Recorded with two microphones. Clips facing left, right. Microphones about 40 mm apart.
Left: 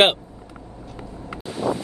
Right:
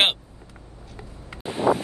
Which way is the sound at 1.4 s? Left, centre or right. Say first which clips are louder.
Right 3 dB; right.